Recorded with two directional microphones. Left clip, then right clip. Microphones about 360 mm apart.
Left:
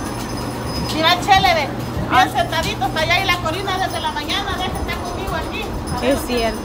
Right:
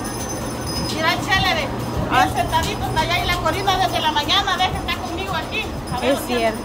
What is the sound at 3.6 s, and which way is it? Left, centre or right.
Music, right.